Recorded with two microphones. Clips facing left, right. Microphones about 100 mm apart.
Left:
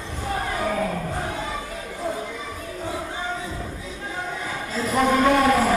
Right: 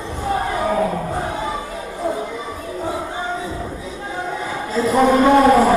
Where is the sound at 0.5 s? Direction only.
30° right (ahead or behind).